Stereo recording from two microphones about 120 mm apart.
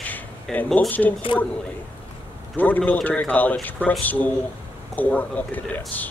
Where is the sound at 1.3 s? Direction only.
45° left (ahead or behind).